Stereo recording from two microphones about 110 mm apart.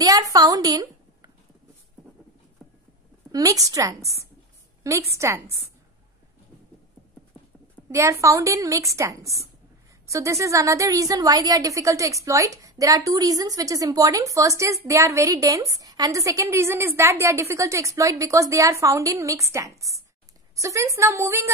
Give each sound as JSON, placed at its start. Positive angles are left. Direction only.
{"t": 0.0, "sound": "a woman's voice", "side_deg": -35}
{"t": 2.6, "sound": "clip-clop", "side_deg": 0}
{"t": 3.3, "sound": "a woman's voice", "side_deg": -35}
{"t": 7.9, "sound": "a woman's voice", "side_deg": -25}